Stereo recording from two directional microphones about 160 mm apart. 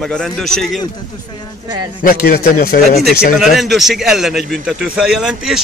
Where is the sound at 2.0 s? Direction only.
60° left (ahead or behind).